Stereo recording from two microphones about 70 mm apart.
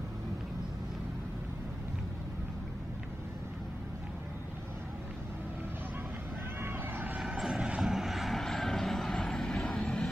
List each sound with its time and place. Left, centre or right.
6.6 s vehicle: right
7.2 s vehicle: centre